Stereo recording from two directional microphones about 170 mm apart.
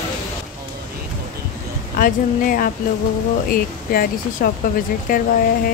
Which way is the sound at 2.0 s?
55° left (ahead or behind).